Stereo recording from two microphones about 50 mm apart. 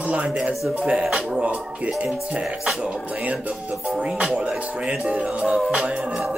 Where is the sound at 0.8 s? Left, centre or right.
Centre.